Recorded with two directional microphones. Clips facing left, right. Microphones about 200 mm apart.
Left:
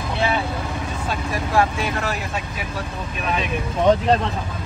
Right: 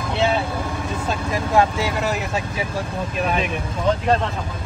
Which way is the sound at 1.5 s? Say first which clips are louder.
Right 2 dB; 20° right (ahead or behind).